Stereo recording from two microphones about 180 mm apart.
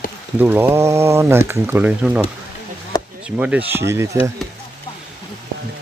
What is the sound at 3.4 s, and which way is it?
Speech, 10° right (ahead or behind).